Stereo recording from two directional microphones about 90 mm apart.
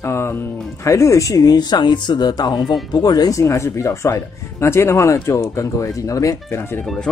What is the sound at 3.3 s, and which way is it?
Speech, 30° left (ahead or behind).